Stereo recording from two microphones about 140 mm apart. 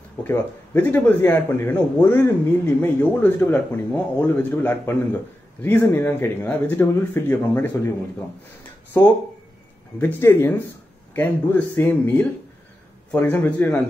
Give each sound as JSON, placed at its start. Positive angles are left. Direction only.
{"t": 0.2, "sound": "speech", "side_deg": 15}
{"t": 9.0, "sound": "speech", "side_deg": 20}